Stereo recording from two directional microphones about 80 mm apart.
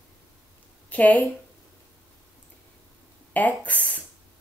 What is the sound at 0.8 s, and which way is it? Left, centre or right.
Speech, centre.